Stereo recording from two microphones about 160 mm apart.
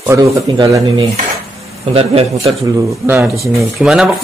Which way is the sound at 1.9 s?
40° right (ahead or behind).